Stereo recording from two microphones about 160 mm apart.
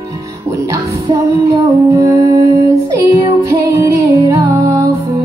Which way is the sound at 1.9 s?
20° right (ahead or behind).